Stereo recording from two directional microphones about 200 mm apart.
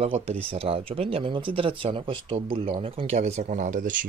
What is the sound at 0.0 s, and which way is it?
Speech, 30° right (ahead or behind).